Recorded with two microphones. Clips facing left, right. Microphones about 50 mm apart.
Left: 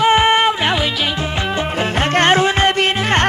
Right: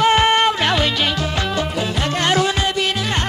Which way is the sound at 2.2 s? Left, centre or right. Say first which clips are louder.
Left 5 dB; left.